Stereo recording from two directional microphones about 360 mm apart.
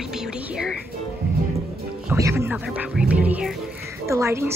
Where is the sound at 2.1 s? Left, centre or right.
Centre.